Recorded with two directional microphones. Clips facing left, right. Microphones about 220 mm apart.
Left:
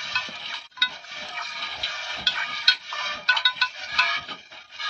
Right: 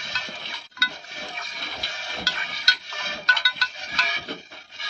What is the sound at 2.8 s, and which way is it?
Dishes, 20° right (ahead or behind).